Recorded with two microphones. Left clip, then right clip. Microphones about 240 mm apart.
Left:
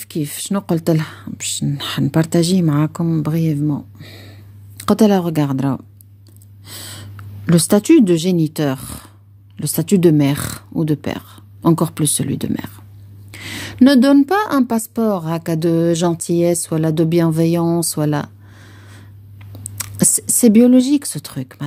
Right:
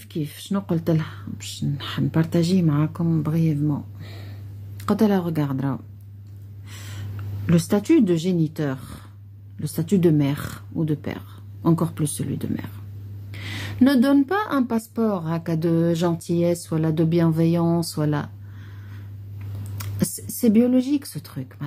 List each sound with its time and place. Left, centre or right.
0.0 s a woman's voice: left
6.7 s gasp: left
7.4 s a woman's voice: left